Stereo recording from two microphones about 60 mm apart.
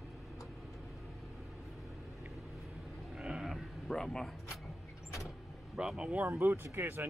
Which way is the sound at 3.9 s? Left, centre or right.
Centre.